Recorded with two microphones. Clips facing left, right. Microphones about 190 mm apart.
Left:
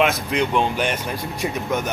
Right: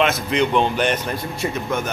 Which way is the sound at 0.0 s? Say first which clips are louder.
Right 1 dB; 10° left (ahead or behind).